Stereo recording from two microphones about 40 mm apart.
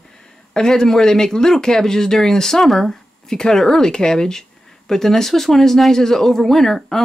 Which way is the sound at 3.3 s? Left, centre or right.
Centre.